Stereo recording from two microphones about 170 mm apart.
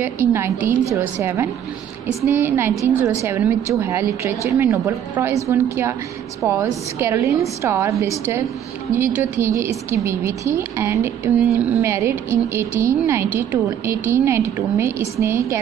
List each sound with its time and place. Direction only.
0.0 s a woman's voice: 15° right (ahead or behind)